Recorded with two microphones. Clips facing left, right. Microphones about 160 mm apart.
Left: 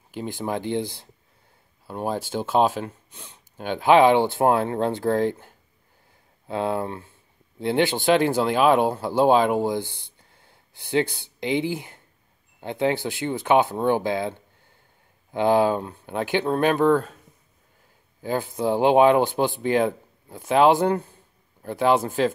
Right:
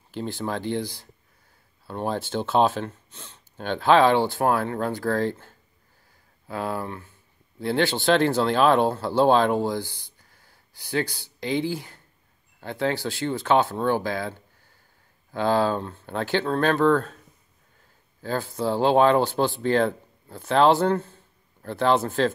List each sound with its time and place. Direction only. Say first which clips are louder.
0.1 s speech: left 1 dB; 15° left (ahead or behind)
1.9 s speech: even; 10° left (ahead or behind)
10.1 s a sound: left 2 dB; 25° left (ahead or behind)
12.5 s speech: left 3 dB; 20° left (ahead or behind)
18.2 s speech: left 2 dB; 15° left (ahead or behind)